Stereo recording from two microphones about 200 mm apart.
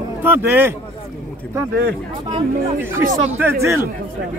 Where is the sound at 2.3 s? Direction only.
25° right (ahead or behind).